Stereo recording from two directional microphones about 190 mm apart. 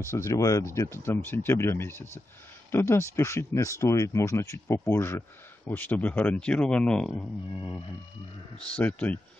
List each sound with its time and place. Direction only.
0.1 s speech: 15° left (ahead or behind)
8.5 s speech: 10° left (ahead or behind)